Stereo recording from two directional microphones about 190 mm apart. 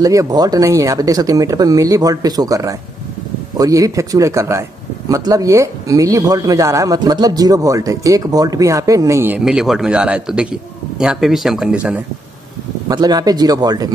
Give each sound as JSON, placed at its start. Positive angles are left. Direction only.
{"t": 0.0, "sound": "speech", "side_deg": -20}
{"t": 12.8, "sound": "speech", "side_deg": -20}